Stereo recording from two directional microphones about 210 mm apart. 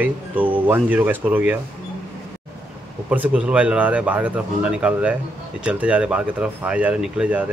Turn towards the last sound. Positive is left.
turn(degrees=-5)  # may be behind; listen again after turning